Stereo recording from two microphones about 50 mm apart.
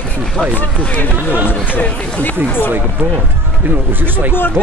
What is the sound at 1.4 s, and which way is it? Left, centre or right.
Speech, left.